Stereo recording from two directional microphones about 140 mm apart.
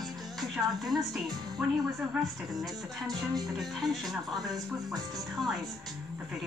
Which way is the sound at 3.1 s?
30° right (ahead or behind).